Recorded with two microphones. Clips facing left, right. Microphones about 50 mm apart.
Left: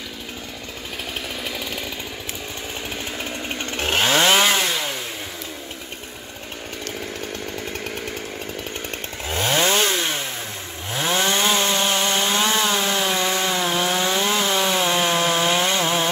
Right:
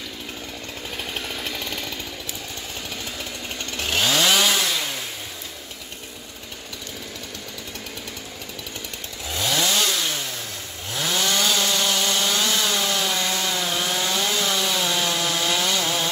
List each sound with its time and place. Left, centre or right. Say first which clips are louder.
1.4 s chainsaw: left 1 dB; centre
3.5 s chainsaw: left 3 dB; left
9.3 s chainsaw: left 4 dB; left